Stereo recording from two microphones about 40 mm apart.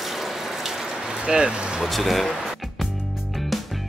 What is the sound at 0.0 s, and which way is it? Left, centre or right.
Water, centre.